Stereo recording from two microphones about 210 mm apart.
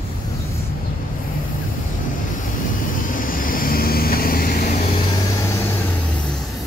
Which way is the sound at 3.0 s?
40° left (ahead or behind).